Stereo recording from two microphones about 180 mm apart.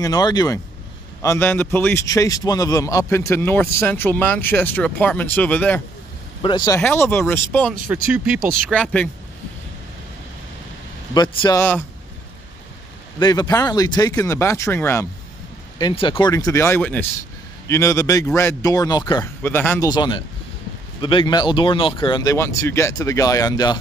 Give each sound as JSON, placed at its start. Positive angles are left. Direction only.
{"t": 0.0, "sound": "a man's voice", "side_deg": 20}
{"t": 6.4, "sound": "speech", "side_deg": 25}
{"t": 6.8, "sound": "a man's voice", "side_deg": 10}
{"t": 7.9, "sound": "speech", "side_deg": -10}
{"t": 8.4, "sound": "speech", "side_deg": -50}
{"t": 8.6, "sound": "a man's voice", "side_deg": 5}
{"t": 11.1, "sound": "speech", "side_deg": 20}
{"t": 13.2, "sound": "speech", "side_deg": 20}
{"t": 15.8, "sound": "a man's voice", "side_deg": 30}
{"t": 19.4, "sound": "a man's voice", "side_deg": 10}
{"t": 19.9, "sound": "speech", "side_deg": 25}